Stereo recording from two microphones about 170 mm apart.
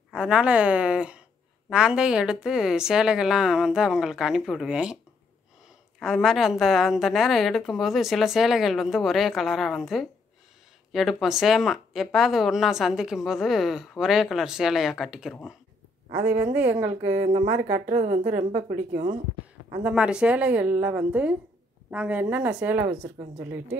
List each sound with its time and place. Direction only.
0.1 s a woman's voice: 5° right (ahead or behind)
5.9 s speech: centre (ahead or behind)
16.5 s a woman's voice: 10° right (ahead or behind)
17.6 s a woman's voice: 40° right (ahead or behind)
19.8 s a woman's voice: 5° right (ahead or behind)